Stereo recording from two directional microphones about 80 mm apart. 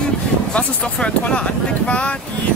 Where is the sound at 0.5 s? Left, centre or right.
Centre.